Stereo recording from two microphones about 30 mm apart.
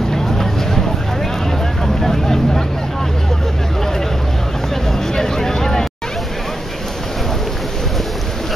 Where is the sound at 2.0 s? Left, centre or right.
Centre.